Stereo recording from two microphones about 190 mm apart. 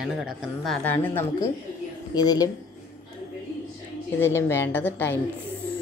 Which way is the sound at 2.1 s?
20° left (ahead or behind).